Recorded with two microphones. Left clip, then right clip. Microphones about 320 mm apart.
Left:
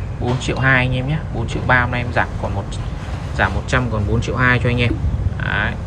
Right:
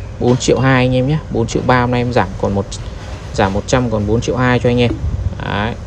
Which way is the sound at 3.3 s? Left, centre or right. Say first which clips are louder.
Right 4 dB; centre.